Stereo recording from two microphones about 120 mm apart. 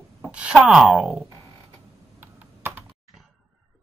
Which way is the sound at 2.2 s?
15° right (ahead or behind).